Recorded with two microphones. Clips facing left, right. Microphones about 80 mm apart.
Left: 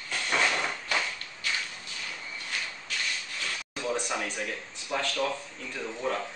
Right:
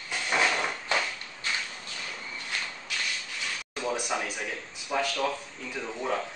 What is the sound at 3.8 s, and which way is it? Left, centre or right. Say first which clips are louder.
Speech: right 1 dB; centre.